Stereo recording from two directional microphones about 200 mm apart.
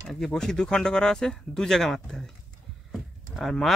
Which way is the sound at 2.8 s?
Centre (ahead or behind).